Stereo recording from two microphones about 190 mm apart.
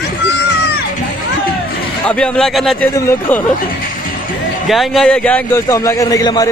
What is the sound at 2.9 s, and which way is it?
Speech, 15° left (ahead or behind).